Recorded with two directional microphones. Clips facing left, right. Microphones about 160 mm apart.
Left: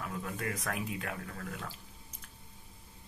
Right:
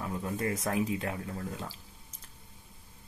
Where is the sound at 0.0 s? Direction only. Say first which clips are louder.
Right 5 dB; 25° right (ahead or behind).